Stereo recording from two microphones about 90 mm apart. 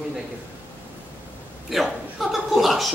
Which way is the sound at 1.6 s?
Centre (ahead or behind).